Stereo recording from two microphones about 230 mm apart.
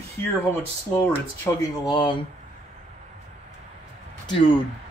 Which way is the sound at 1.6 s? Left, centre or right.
Centre.